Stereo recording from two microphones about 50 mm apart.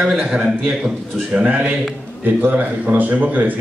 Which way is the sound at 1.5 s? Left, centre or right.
Right.